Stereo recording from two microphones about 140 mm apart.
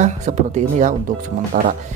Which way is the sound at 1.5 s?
70° right (ahead or behind).